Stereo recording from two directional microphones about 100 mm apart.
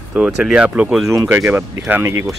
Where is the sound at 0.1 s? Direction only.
10° right (ahead or behind).